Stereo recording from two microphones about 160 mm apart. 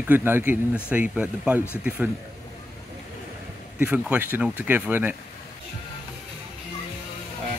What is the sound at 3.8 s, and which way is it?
Speech, 10° right (ahead or behind).